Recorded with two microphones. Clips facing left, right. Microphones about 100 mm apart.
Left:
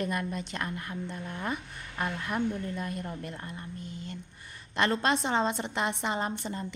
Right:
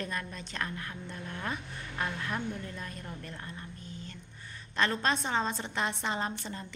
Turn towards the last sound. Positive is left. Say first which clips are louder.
# left 4 dB
turn(degrees=20)  # may be behind; listen again after turning